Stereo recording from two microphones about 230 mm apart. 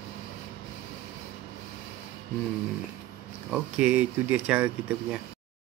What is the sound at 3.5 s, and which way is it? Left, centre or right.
Speech, centre.